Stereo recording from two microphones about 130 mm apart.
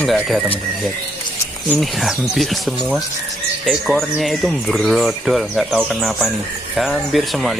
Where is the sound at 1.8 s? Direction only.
Centre (ahead or behind).